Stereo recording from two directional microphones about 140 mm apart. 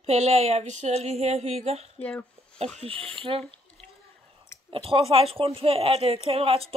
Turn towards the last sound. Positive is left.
turn(degrees=-45)  # may be behind; listen again after turning